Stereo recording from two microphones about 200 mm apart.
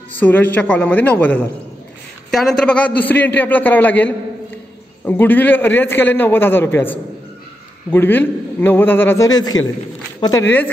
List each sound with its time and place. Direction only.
0.2 s a man's voice: 10° left (ahead or behind)